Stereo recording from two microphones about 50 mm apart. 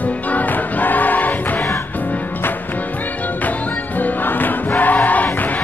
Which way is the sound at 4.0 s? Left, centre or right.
Left.